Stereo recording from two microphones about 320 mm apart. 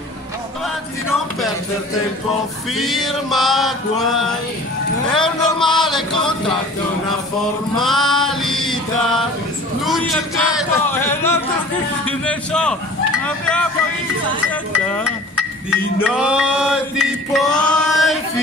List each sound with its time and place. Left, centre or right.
2.7 s music: centre
7.8 s music: centre
13.2 s vehicle: centre
15.7 s music: centre